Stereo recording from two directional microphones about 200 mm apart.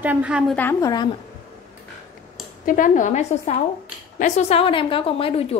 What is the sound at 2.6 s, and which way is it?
A woman's voice, 40° left (ahead or behind).